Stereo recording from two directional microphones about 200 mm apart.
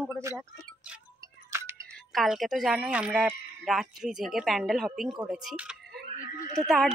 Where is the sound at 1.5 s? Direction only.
15° right (ahead or behind).